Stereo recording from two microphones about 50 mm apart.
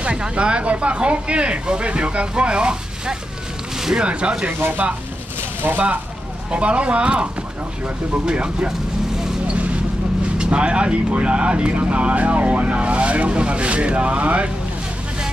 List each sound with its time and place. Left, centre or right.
0.0 s speech: centre
5.6 s speech: right
6.5 s speech: right
8.3 s speech: centre
9.5 s vehicle: right
10.3 s speech: centre